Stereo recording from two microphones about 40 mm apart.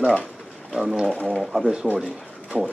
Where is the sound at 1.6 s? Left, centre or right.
Right.